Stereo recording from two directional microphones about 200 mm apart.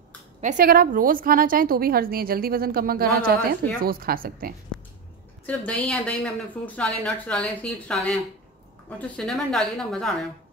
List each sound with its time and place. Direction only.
0.4 s a woman's voice: 40° right (ahead or behind)
5.5 s a woman's voice: 5° left (ahead or behind)